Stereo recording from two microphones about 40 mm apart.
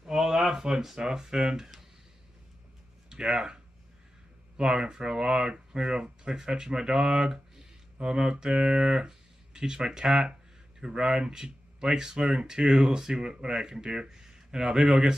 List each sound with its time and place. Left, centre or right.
0.0 s speech: centre
3.1 s speech: centre
4.6 s speech: right